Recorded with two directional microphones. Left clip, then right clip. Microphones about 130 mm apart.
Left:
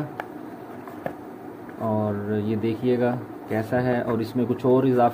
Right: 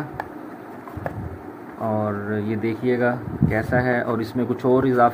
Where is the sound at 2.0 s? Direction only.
10° left (ahead or behind).